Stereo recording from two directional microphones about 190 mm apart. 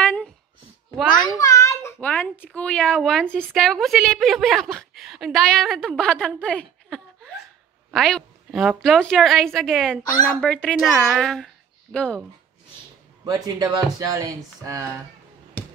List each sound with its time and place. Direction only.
0.0 s a sound: 5° left (ahead or behind)
1.1 s a child's voice: 20° left (ahead or behind); by 12.2 s 5° left (ahead or behind)
13.2 s speech: 20° right (ahead or behind)